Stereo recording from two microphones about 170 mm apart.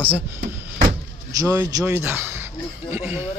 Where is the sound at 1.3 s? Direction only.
20° right (ahead or behind).